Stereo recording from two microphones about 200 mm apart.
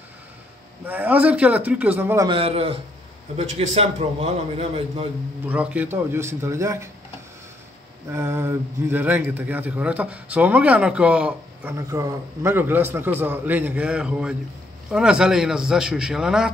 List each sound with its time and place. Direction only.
0.8 s speech: 10° right (ahead or behind)
2.2 s a man's voice: 25° right (ahead or behind)
5.5 s speech: 5° right (ahead or behind)
8.1 s a man's voice: 10° right (ahead or behind)